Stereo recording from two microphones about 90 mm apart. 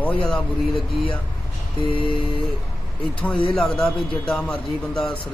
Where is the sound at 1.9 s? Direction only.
85° left.